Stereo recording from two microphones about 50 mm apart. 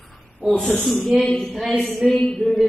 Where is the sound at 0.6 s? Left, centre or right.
Centre.